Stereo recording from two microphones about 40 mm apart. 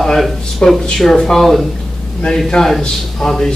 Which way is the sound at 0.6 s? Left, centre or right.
Centre.